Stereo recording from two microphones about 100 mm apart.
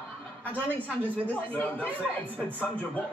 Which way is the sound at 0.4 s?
15° left (ahead or behind).